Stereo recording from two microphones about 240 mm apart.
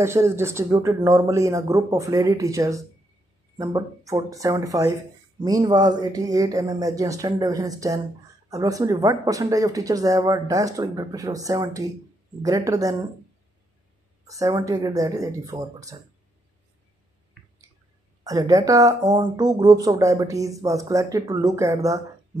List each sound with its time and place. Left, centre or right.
0.0 s speech: centre
14.2 s speech: centre
18.2 s speech: centre